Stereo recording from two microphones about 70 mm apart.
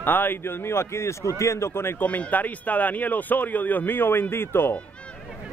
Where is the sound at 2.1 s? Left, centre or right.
Left.